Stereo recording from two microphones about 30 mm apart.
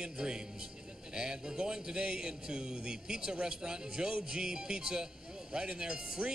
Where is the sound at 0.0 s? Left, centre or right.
Right.